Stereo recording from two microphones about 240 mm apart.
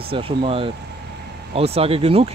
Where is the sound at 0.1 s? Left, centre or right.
Right.